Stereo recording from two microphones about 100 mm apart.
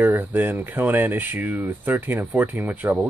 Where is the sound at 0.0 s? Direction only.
20° right (ahead or behind).